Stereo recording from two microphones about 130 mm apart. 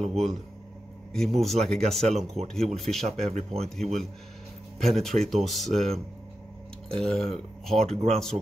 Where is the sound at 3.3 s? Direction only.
60° right (ahead or behind).